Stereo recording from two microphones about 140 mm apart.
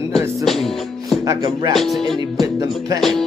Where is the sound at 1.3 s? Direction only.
30° right (ahead or behind).